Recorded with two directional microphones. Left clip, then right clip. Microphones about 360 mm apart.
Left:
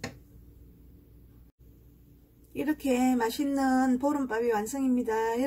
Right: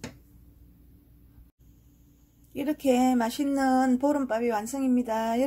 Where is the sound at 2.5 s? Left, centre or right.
Centre.